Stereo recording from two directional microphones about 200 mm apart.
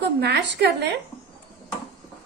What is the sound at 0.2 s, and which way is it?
Speech, 55° right (ahead or behind).